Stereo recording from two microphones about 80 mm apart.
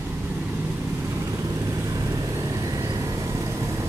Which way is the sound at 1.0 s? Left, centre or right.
Right.